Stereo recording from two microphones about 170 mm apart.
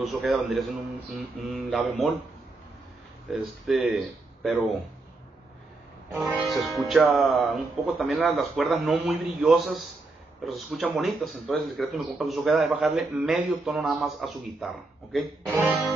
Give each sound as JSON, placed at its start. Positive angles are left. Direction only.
{"t": 0.0, "sound": "speech", "side_deg": 0}
{"t": 3.3, "sound": "speech", "side_deg": 0}
{"t": 6.1, "sound": "speech", "side_deg": 0}
{"t": 15.5, "sound": "music", "side_deg": -15}